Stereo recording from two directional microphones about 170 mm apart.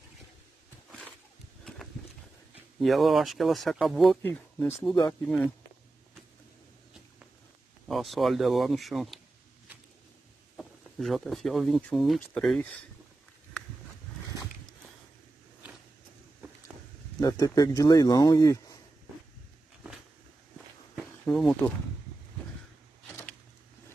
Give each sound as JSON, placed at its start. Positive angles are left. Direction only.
{"t": 2.8, "sound": "speech", "side_deg": 0}
{"t": 4.2, "sound": "speech", "side_deg": 15}
{"t": 7.9, "sound": "speech", "side_deg": 0}
{"t": 10.6, "sound": "speech", "side_deg": 0}
{"t": 17.2, "sound": "speech", "side_deg": 20}
{"t": 20.5, "sound": "walk", "side_deg": 0}